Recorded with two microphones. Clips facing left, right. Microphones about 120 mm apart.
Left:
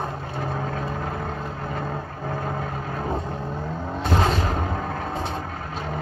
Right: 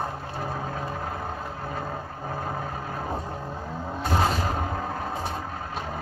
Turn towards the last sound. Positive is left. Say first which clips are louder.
# left 2 dB
turn(degrees=25)  # may be behind; listen again after turning